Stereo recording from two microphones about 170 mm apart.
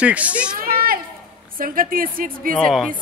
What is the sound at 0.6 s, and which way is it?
Children playing, 60° right (ahead or behind).